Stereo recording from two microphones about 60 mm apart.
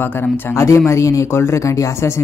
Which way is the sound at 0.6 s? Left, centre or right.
Left.